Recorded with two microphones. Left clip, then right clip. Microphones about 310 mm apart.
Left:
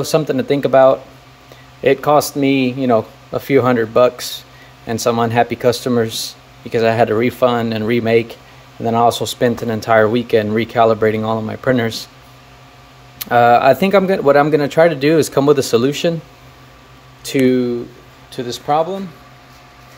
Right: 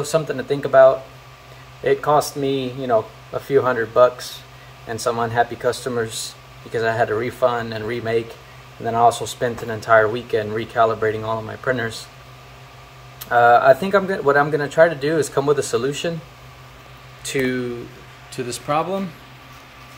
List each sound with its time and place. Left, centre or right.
0.0 s speech: left
13.2 s speech: left
17.3 s speech: left
18.3 s speech: centre